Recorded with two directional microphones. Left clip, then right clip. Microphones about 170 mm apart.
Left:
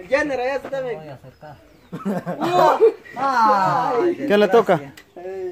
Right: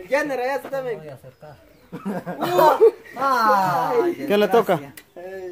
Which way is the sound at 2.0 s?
55° left (ahead or behind).